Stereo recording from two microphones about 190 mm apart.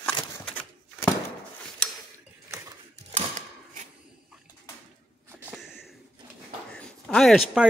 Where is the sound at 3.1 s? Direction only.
40° right (ahead or behind).